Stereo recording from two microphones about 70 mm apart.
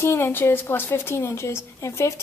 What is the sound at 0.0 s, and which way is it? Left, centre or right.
A woman's voice, left.